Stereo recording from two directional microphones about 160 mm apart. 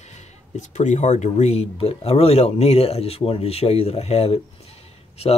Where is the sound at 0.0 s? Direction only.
45° left (ahead or behind).